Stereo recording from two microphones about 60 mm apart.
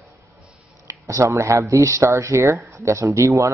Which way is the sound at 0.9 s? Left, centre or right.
Right.